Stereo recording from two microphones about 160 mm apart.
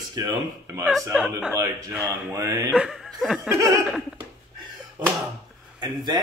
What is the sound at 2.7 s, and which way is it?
Chuckle, 5° right (ahead or behind).